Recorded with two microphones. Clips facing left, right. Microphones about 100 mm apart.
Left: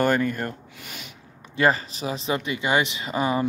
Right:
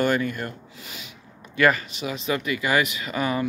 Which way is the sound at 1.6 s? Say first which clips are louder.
Right 1 dB; 30° left (ahead or behind).